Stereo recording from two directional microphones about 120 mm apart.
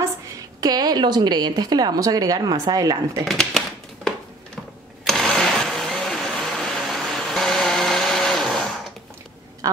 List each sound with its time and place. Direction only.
0.6 s speech: 35° right (ahead or behind)
3.3 s a sound: 5° left (ahead or behind)
5.0 s vehicle: 5° left (ahead or behind)